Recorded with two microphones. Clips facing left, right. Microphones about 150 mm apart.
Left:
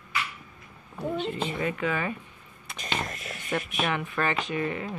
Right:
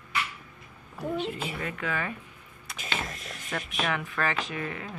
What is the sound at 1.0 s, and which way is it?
Speech, centre (ahead or behind).